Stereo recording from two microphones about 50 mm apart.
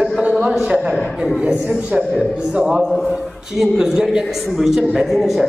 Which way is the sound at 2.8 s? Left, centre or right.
Centre.